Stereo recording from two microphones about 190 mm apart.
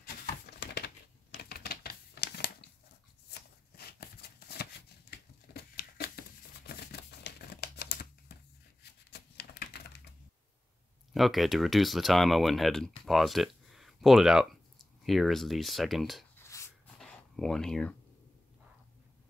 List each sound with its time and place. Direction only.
0.0 s typewriter: 55° left (ahead or behind)
3.3 s shuffling cards: 60° left (ahead or behind)
5.5 s crumpling: 55° left (ahead or behind)
9.1 s typewriter: 60° left (ahead or behind)
11.1 s speech: centre (ahead or behind)
16.3 s a sound: 15° left (ahead or behind)
17.0 s a sound: centre (ahead or behind)